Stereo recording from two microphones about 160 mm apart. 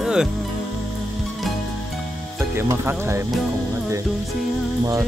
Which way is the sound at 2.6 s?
15° right (ahead or behind).